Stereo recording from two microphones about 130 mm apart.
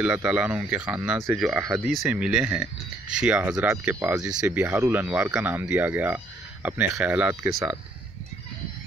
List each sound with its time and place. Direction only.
0.0 s speech: 10° right (ahead or behind)